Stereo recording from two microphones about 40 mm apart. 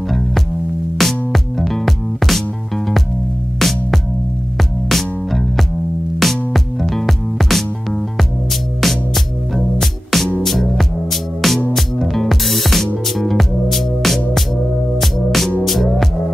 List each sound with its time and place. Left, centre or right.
0.9 s music: centre